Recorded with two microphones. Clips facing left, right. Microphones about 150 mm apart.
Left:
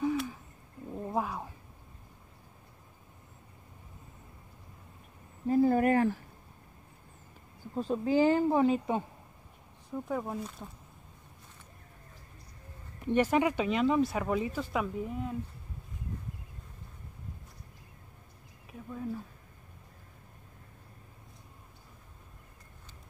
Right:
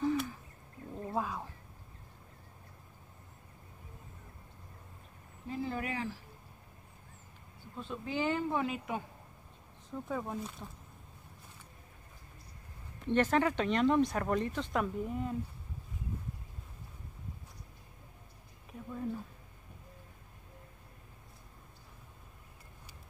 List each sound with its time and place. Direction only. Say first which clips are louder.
0.0 s bird: left 1 dB; 5° left (ahead or behind)
0.9 s a sound: left 3 dB; 15° left (ahead or behind)
5.5 s speech: left 13 dB; 45° left (ahead or behind)
7.7 s speech: left 10 dB; 40° left (ahead or behind)
9.8 s speech: left 3 dB; 10° left (ahead or behind)
13.0 s speech: left 2 dB; 10° left (ahead or behind)